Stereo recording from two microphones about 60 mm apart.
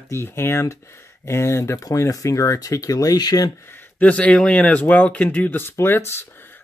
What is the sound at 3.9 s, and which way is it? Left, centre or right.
Speech, left.